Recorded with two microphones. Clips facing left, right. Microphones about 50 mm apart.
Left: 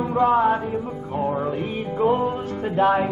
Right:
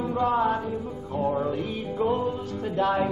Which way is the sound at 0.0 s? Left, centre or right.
Left.